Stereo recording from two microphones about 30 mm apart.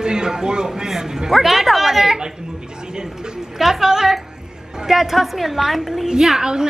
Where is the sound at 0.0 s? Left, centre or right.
Right; by 2.1 s centre.